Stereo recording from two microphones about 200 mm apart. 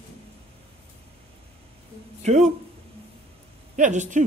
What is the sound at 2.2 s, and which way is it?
Speech, 35° right (ahead or behind).